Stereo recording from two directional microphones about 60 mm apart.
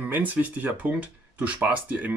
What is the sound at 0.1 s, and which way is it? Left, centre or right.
Speech, right.